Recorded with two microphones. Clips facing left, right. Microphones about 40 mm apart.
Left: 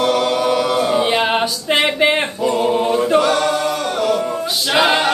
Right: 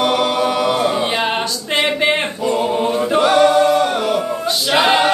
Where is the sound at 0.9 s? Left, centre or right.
Centre.